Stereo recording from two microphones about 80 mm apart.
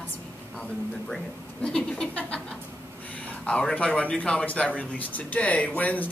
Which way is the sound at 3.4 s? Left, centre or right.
Centre.